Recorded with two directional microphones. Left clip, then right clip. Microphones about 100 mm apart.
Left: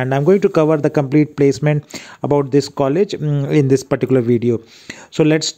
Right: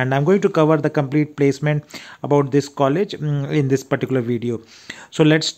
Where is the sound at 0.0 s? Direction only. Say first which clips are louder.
Left 3 dB; 50° left (ahead or behind).